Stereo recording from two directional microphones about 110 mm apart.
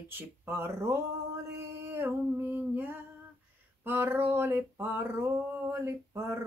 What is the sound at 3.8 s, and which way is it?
Speech, 20° right (ahead or behind).